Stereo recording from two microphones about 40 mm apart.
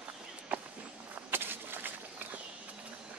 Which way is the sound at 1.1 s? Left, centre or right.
Right.